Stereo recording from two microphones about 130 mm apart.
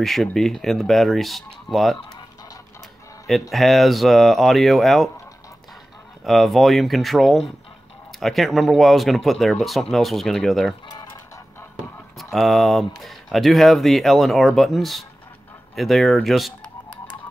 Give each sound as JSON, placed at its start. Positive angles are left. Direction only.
{"t": 0.0, "sound": "speech", "side_deg": 0}
{"t": 3.3, "sound": "speech", "side_deg": 0}
{"t": 6.2, "sound": "speech", "side_deg": 0}
{"t": 12.2, "sound": "speech", "side_deg": 0}